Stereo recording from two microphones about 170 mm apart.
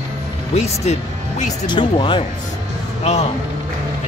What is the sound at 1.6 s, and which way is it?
Speech, 30° left (ahead or behind).